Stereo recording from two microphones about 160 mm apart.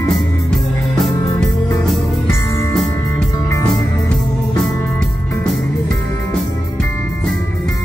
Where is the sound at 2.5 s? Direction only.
20° left (ahead or behind).